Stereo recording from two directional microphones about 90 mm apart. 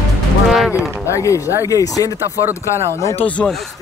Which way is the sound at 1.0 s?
35° left (ahead or behind).